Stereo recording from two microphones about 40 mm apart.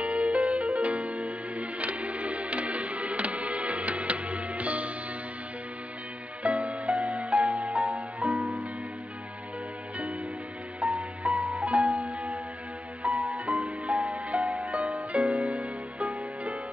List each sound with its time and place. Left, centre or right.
0.0 s music: right
6.4 s music: right
10.8 s music: right